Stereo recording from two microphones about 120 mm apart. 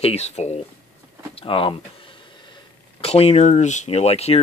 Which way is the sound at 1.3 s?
50° left (ahead or behind).